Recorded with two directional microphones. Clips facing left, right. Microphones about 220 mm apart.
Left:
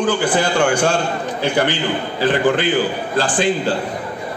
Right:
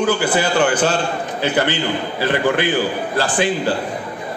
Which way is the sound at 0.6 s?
10° left (ahead or behind).